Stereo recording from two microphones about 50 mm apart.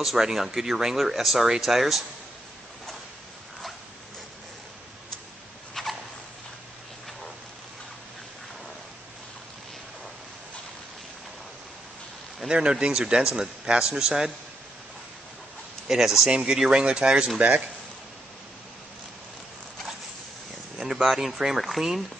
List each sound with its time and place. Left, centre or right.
0.0 s speech: centre
5.8 s a sound: centre
12.4 s speech: centre
15.9 s speech: centre
16.3 s speech: centre
20.7 s speech: centre